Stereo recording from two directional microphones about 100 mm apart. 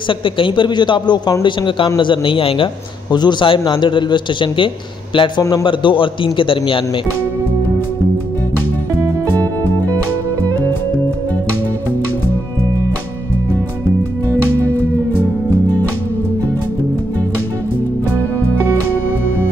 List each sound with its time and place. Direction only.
0.1 s a man's voice: 60° left (ahead or behind)
5.4 s a man's voice: 40° left (ahead or behind)
5.7 s a man's voice: 55° left (ahead or behind)
9.0 s music: 30° right (ahead or behind)